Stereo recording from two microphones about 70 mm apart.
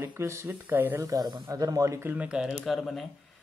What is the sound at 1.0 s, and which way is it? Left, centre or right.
Speech, right.